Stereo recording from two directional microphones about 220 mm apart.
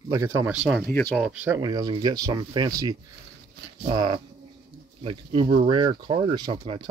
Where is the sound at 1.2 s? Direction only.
5° right (ahead or behind).